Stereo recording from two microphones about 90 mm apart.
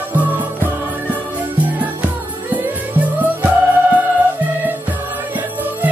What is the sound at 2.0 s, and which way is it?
Music, 20° right (ahead or behind).